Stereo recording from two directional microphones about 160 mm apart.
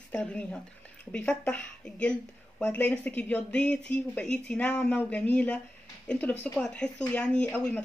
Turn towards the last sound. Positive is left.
turn(degrees=5)  # may be behind; listen again after turning